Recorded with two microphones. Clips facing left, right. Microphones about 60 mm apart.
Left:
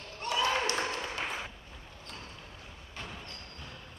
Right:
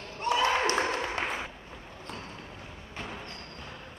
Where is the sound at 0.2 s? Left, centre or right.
Right.